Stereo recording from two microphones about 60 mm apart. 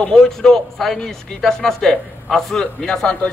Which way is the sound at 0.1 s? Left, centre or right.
Centre.